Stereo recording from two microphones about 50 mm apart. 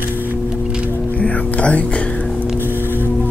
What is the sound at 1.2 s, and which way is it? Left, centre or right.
Speech, left.